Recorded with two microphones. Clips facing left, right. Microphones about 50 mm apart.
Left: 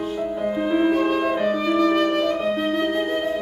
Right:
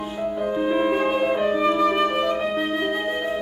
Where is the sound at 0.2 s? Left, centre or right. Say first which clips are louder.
Right 2 dB; centre.